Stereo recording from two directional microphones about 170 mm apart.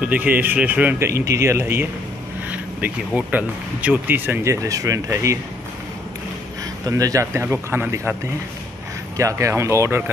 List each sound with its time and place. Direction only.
0.0 s speech: 10° right (ahead or behind)
3.2 s speech: 10° right (ahead or behind)
6.9 s speech: 20° right (ahead or behind)